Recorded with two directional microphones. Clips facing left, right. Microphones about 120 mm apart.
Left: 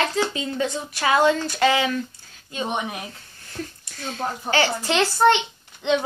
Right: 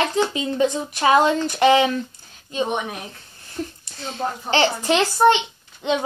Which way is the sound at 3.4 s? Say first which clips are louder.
Right 4 dB; 25° right (ahead or behind).